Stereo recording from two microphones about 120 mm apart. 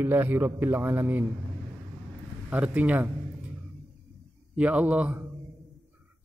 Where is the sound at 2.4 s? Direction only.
10° right (ahead or behind).